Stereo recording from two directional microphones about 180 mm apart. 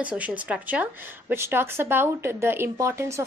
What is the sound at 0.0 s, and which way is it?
A woman's voice, 10° right (ahead or behind).